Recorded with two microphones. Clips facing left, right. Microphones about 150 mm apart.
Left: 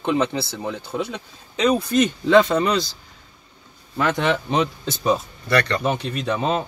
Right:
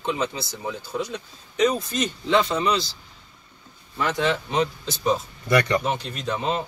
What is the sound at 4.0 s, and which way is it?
Speech, 60° left (ahead or behind).